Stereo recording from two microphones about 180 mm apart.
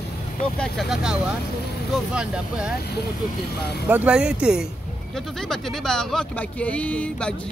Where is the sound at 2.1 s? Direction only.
5° right (ahead or behind).